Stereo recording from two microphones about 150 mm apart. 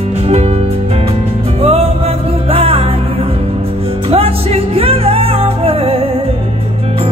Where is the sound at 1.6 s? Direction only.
40° right (ahead or behind).